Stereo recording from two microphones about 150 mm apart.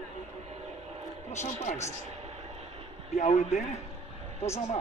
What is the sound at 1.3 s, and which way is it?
Speech, 50° left (ahead or behind).